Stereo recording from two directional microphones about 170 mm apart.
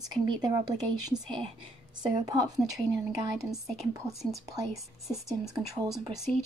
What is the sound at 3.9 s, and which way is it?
Speech, 20° right (ahead or behind).